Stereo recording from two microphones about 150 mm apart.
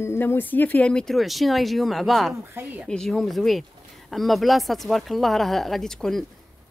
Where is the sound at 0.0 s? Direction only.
15° left (ahead or behind); by 2.3 s centre (ahead or behind).